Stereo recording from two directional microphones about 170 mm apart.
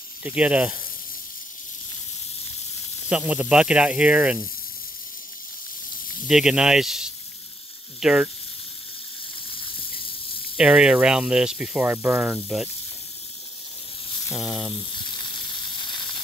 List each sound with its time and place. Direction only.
0.2 s speech: 10° right (ahead or behind)
3.1 s speech: 10° right (ahead or behind)
6.2 s speech: 5° right (ahead or behind)
10.6 s speech: 5° right (ahead or behind)
14.3 s speech: centre (ahead or behind)
15.0 s hiss: 25° left (ahead or behind)